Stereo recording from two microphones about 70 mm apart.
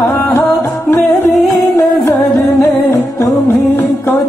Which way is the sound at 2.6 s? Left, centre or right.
Left.